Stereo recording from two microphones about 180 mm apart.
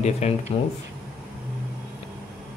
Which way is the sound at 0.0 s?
40° left (ahead or behind).